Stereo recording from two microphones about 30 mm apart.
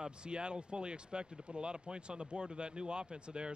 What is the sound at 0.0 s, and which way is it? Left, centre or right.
Speech, right.